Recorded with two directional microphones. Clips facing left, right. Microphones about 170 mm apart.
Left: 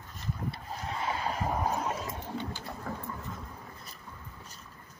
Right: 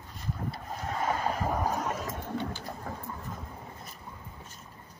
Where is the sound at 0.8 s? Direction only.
45° right (ahead or behind).